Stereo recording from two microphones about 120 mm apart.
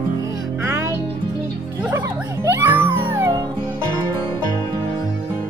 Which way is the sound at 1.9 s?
20° right (ahead or behind).